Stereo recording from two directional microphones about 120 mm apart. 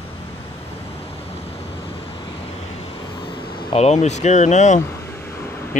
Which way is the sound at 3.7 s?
65° left (ahead or behind).